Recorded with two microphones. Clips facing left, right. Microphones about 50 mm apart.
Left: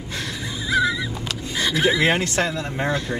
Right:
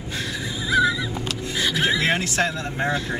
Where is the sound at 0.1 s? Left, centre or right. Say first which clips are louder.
Right 1 dB; centre.